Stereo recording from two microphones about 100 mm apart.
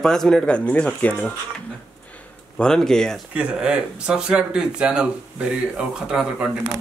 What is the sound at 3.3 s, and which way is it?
Speech, 10° right (ahead or behind).